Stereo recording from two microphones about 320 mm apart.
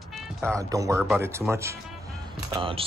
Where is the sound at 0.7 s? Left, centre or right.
Centre.